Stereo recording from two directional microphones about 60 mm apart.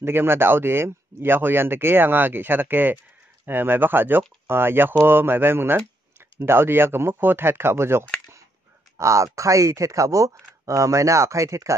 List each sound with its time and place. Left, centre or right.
0.0 s speech: right
8.9 s speech: right